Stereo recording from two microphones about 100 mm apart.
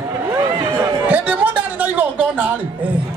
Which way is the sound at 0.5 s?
45° right (ahead or behind).